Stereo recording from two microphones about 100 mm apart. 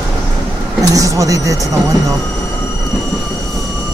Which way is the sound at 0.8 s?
35° right (ahead or behind).